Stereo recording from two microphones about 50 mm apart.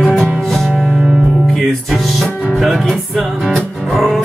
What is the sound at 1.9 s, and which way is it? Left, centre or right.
Music, centre.